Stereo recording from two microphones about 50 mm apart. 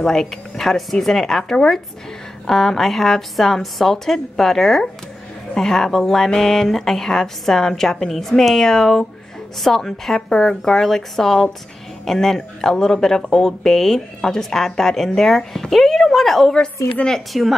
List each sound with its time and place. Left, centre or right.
0.0 s a woman's voice: centre